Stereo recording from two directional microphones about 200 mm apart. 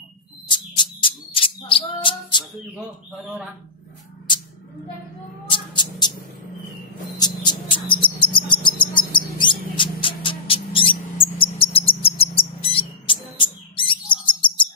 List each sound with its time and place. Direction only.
0.5 s music: 25° left (ahead or behind)
5.5 s cricket: 20° left (ahead or behind)
7.2 s cricket: 20° left (ahead or behind)
8.9 s mouse: 25° left (ahead or behind)
11.3 s bird: 25° left (ahead or behind)